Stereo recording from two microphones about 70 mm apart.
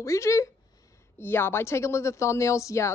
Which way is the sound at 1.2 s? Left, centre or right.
Left.